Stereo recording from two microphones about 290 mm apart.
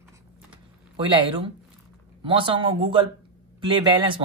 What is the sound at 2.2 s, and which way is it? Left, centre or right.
Speech, centre.